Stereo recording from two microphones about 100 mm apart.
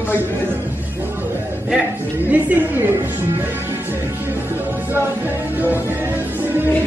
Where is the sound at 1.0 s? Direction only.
20° right (ahead or behind).